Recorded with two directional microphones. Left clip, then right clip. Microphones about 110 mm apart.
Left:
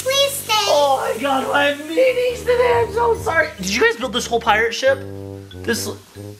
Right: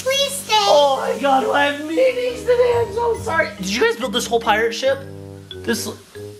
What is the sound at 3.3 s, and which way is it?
A woman's voice, 10° left (ahead or behind).